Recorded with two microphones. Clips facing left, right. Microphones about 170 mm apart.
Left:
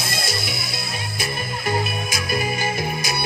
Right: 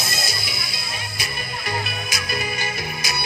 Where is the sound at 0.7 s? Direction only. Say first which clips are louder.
Left 4 dB; 50° left (ahead or behind).